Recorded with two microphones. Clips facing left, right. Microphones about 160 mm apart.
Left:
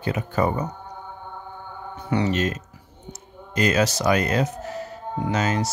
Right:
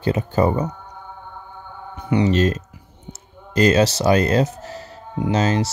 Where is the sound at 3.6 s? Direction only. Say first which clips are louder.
Right 5 dB; 30° right (ahead or behind).